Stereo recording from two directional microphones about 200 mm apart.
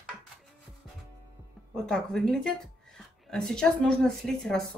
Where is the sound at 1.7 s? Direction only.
Centre (ahead or behind).